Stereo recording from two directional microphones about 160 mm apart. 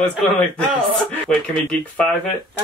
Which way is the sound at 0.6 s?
10° left (ahead or behind).